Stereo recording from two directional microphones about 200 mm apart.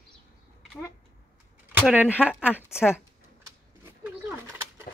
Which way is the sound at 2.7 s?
10° left (ahead or behind).